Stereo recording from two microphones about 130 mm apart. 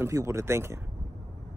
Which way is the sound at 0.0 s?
20° right (ahead or behind).